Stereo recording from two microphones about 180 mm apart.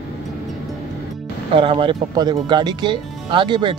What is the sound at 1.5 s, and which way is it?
Speech, 30° right (ahead or behind).